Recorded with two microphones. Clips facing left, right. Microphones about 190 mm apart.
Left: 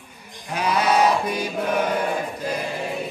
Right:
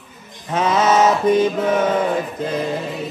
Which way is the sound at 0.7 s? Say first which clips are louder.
Right 3 dB; 65° left (ahead or behind).